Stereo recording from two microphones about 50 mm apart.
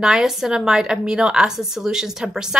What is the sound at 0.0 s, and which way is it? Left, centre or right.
A woman's voice, centre.